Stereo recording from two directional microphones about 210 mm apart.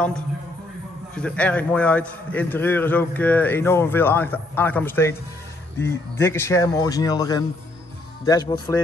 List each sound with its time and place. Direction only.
1.1 s a man's voice: 5° left (ahead or behind)